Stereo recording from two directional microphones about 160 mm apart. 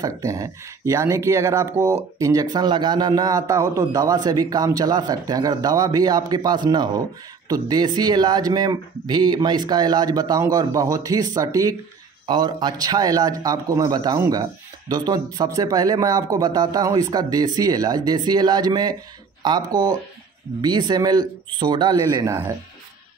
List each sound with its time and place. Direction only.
0.0 s speech: 20° right (ahead or behind)